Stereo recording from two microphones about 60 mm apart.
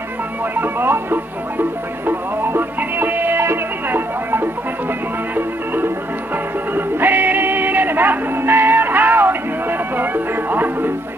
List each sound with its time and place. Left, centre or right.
0.6 s music: right
6.7 s music: right